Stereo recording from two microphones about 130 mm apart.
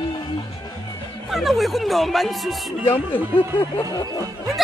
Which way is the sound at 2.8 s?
15° left (ahead or behind).